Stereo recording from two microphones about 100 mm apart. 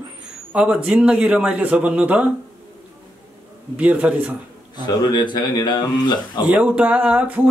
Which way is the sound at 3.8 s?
15° right (ahead or behind).